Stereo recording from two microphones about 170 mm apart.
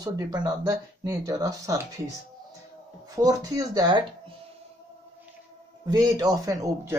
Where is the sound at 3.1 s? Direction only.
20° right (ahead or behind).